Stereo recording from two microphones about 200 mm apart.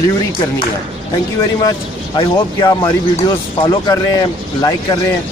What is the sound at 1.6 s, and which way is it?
Speech, 20° left (ahead or behind).